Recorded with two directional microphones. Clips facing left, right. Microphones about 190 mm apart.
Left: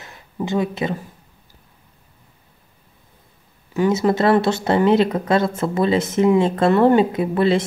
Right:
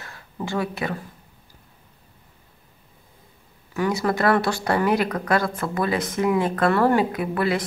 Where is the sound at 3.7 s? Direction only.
20° left (ahead or behind).